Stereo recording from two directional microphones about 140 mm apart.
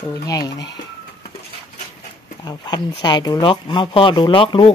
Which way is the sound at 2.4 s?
30° left (ahead or behind).